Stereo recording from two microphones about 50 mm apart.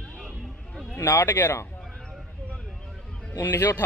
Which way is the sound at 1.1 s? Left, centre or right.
Left.